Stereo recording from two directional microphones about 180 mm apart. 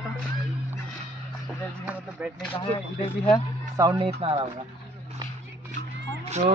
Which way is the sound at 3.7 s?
20° right (ahead or behind).